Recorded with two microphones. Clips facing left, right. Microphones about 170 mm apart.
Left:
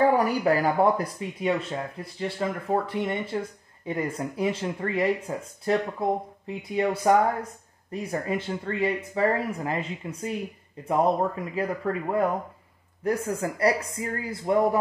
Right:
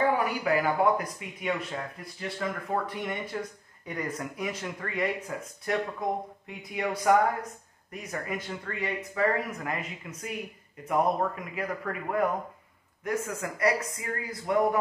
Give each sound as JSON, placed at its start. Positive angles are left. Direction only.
{"t": 0.1, "sound": "speech", "side_deg": 40}